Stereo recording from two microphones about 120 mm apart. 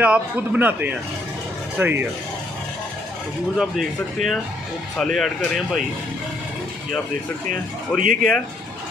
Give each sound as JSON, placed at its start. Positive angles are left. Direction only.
{"t": 0.0, "sound": "a man's voice", "side_deg": -10}
{"t": 3.5, "sound": "speech", "side_deg": 0}
{"t": 8.0, "sound": "speech", "side_deg": -90}